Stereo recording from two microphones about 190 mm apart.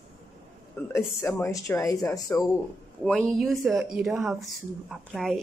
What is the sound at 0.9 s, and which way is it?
Speech, 15° left (ahead or behind).